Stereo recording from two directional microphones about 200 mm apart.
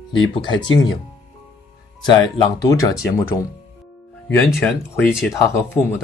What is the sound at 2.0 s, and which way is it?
Speech, 20° left (ahead or behind).